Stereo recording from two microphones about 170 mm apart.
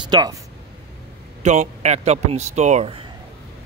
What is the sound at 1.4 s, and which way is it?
Speech, 40° right (ahead or behind).